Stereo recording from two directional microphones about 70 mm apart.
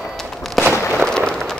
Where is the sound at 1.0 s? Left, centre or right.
Centre.